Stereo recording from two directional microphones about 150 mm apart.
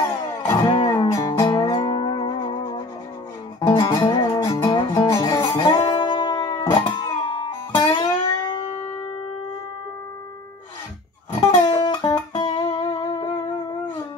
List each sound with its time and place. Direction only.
0.7 s music: 30° left (ahead or behind)
11.4 s music: 25° left (ahead or behind)